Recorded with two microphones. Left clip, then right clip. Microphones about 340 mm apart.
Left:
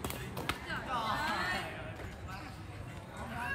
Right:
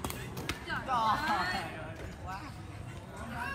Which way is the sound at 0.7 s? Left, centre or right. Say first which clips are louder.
Right 7 dB; centre.